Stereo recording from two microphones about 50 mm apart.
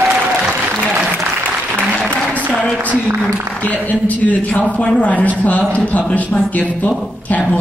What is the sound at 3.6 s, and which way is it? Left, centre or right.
A man's voice, left.